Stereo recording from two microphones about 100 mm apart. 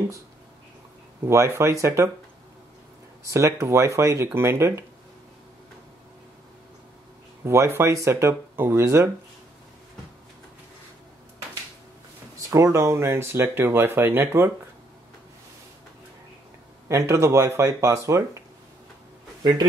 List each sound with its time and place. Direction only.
1.2 s speech: 30° right (ahead or behind)
3.3 s speech: 30° right (ahead or behind)
7.4 s speech: 25° right (ahead or behind)
12.4 s speech: 30° right (ahead or behind)
16.8 s speech: 30° right (ahead or behind)